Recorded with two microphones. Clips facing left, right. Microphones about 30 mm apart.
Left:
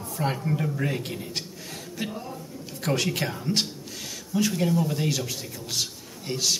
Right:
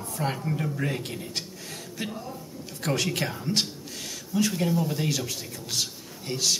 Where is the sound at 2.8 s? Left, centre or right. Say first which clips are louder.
Left 1 dB; centre.